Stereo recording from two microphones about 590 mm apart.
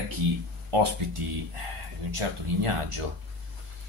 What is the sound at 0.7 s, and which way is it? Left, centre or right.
A man's voice, right.